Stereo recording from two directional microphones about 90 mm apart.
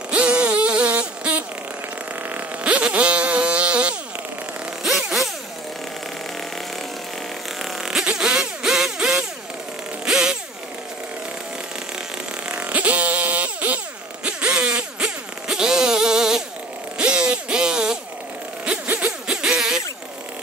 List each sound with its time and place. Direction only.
0.1 s zipper: 10° right (ahead or behind)
2.3 s vehicle: 15° right (ahead or behind)
4.8 s zipper: centre (ahead or behind)
7.8 s zipper: 5° right (ahead or behind)
12.4 s fart: 15° right (ahead or behind)
14.2 s zipper: 10° right (ahead or behind)
17.0 s a sound: 10° right (ahead or behind)
18.7 s zipper: 15° right (ahead or behind)
19.2 s music: 5° right (ahead or behind)